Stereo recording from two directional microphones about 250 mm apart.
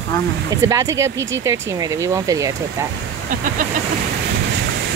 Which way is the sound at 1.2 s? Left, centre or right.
Right.